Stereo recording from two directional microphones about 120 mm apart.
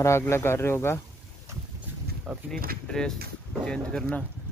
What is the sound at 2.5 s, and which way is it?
Speech, 5° left (ahead or behind).